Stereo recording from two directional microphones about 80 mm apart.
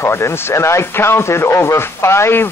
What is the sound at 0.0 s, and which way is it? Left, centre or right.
Speech, left.